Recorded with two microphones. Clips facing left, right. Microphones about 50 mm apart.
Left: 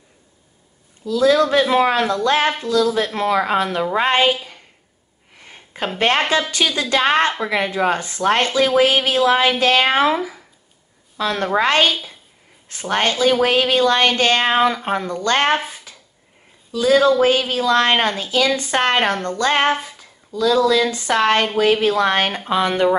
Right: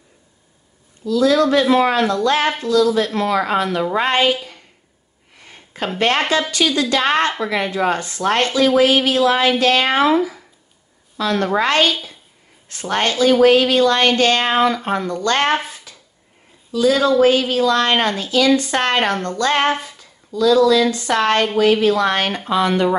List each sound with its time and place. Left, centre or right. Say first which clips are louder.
1.0 s speech: even; left
5.4 s a sound: even; left
5.9 s speech: even; left
10.0 s speech: right 3 dB; centre
11.1 s speech: right 1 dB; left
16.7 s speech: even; centre
19.9 s a sound: right 1 dB; left
20.9 s speech: even; left